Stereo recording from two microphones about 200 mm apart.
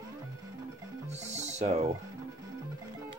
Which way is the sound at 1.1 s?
35° right (ahead or behind).